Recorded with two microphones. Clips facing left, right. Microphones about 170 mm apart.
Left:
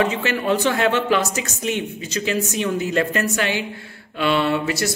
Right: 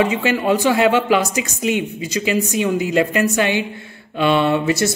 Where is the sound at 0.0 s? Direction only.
15° right (ahead or behind).